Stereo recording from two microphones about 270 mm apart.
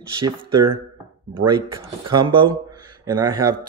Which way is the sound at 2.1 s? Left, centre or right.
Centre.